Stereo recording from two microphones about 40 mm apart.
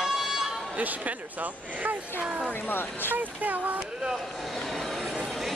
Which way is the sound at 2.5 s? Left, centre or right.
Left.